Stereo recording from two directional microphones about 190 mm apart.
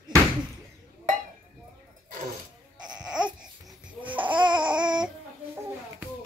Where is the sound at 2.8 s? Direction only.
5° right (ahead or behind).